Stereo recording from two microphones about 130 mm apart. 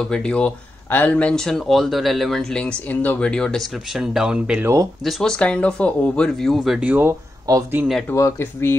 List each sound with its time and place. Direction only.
0.0 s speech: 5° left (ahead or behind)
5.0 s speech: 5° left (ahead or behind); by 7.2 s 15° right (ahead or behind)
7.5 s speech: 30° right (ahead or behind)
8.1 s speech: 20° left (ahead or behind)